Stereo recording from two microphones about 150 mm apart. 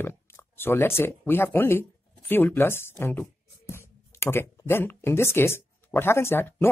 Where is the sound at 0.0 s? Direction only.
15° left (ahead or behind).